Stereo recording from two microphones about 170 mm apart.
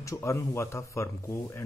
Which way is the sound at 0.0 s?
15° left (ahead or behind).